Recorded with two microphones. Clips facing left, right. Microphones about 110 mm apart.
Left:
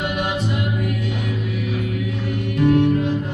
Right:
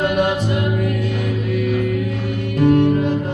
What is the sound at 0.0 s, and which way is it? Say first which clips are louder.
Music: right 7 dB; 45° right (ahead or behind).